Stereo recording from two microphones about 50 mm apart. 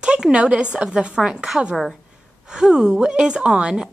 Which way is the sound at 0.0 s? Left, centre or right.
Centre.